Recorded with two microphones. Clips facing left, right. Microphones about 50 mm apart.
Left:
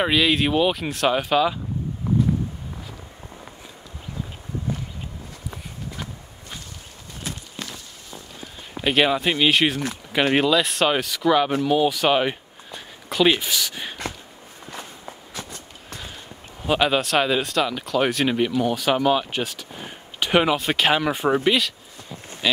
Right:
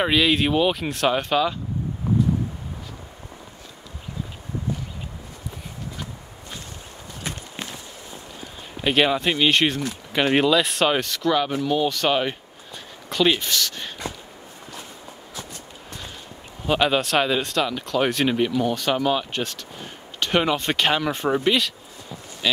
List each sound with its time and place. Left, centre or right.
0.0 s speech: centre
7.5 s walk: right
8.4 s speech: centre
14.7 s walk: left
16.6 s speech: centre